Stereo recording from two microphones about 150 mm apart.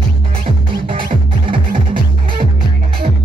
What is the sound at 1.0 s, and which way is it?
Music, 35° right (ahead or behind).